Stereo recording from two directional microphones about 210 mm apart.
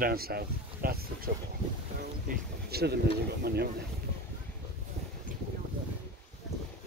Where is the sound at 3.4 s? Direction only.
50° right (ahead or behind).